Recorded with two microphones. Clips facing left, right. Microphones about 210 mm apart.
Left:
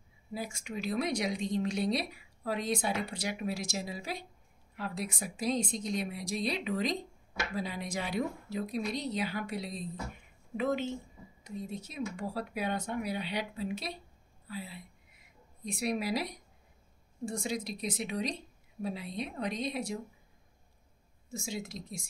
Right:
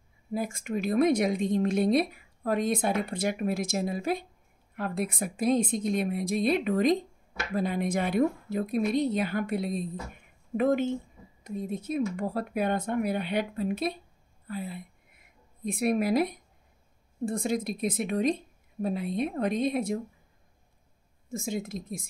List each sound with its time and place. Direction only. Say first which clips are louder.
0.3 s a woman's voice: right 8 dB; 50° right (ahead or behind)
14.5 s a sound: right 6 dB; 55° right (ahead or behind)
17.2 s a woman's voice: right 6 dB; 55° right (ahead or behind)
21.3 s a woman's voice: right 6 dB; 50° right (ahead or behind)